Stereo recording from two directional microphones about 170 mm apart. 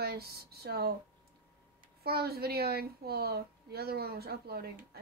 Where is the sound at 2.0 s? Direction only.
65° right (ahead or behind).